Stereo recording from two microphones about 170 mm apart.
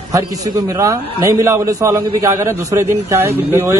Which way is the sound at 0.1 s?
20° right (ahead or behind).